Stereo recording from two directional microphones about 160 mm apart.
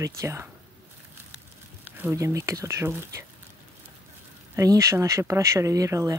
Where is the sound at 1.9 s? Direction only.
15° right (ahead or behind).